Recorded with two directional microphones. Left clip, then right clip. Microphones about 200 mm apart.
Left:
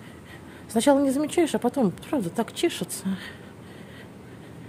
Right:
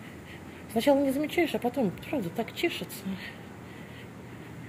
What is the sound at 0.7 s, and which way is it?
A woman's voice, 35° left (ahead or behind).